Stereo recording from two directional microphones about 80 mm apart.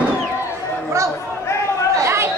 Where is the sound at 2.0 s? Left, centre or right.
Right.